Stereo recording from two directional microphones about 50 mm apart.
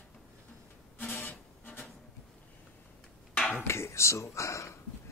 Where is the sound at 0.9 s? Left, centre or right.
Left.